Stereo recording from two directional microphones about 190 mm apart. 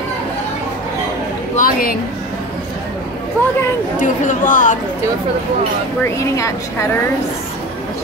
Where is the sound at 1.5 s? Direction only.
50° left (ahead or behind).